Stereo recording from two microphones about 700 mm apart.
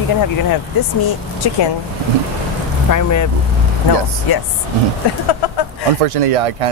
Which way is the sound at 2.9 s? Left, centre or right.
Left.